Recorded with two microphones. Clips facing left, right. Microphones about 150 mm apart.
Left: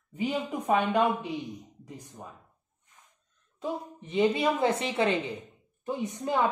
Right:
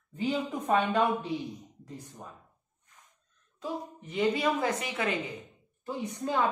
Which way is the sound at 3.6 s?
25° left (ahead or behind).